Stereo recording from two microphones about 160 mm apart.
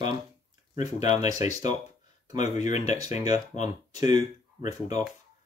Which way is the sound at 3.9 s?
25° right (ahead or behind).